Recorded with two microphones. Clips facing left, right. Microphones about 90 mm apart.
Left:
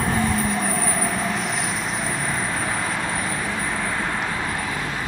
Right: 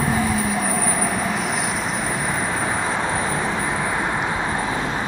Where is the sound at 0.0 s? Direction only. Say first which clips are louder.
Right 1 dB; 5° right (ahead or behind).